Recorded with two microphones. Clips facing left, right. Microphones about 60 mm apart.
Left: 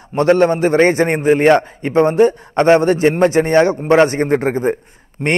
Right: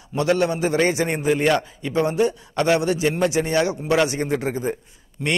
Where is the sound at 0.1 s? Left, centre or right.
Left.